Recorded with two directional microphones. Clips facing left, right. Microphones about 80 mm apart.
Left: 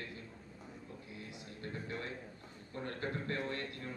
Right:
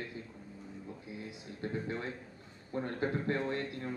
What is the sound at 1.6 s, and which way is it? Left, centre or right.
A man's voice, right.